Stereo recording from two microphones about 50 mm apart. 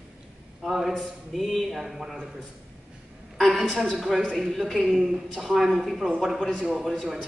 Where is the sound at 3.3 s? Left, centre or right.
Centre.